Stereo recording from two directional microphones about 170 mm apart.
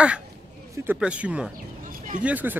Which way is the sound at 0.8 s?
5° right (ahead or behind).